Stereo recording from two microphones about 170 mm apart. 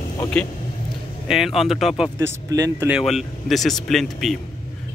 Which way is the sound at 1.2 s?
Centre (ahead or behind).